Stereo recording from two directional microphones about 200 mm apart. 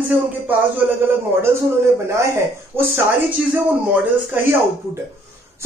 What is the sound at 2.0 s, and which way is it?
Speech, 15° right (ahead or behind).